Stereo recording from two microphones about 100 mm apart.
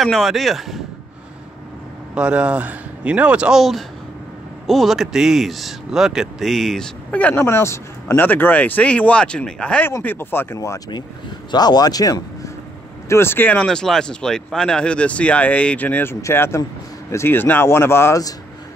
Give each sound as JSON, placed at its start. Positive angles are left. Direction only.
{"t": 0.0, "sound": "speech", "side_deg": 0}
{"t": 2.1, "sound": "speech", "side_deg": -10}
{"t": 7.1, "sound": "speech", "side_deg": 15}
{"t": 7.3, "sound": "speech", "side_deg": 25}
{"t": 9.8, "sound": "speech", "side_deg": 25}
{"t": 11.5, "sound": "speech", "side_deg": 45}
{"t": 13.1, "sound": "speech", "side_deg": 25}
{"t": 13.6, "sound": "speech", "side_deg": 5}